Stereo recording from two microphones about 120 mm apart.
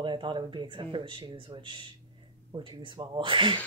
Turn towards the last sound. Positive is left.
turn(degrees=-45)  # may be behind; listen again after turning